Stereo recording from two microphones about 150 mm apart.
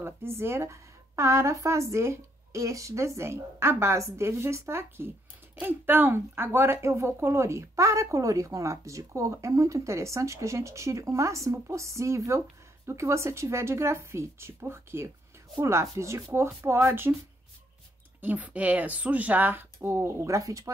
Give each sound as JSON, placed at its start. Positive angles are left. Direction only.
{"t": 0.0, "sound": "speech", "side_deg": -15}
{"t": 18.2, "sound": "speech", "side_deg": -10}